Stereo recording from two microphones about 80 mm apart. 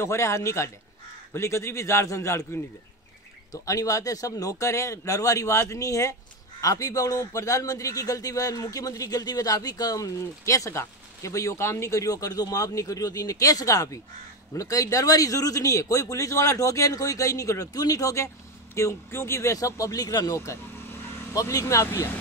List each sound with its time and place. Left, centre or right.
0.0 s a man's voice: left
20.7 s vehicle: left
21.4 s a man's voice: left